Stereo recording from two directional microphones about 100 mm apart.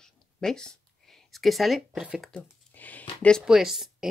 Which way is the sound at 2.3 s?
15° left (ahead or behind).